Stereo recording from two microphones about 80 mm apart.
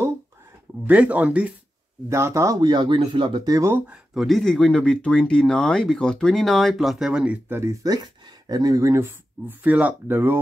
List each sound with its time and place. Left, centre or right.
0.8 s speech: centre
2.0 s speech: right
2.6 s speech: right
3.9 s speech: centre
7.4 s speech: right
7.7 s speech: right
9.0 s speech: right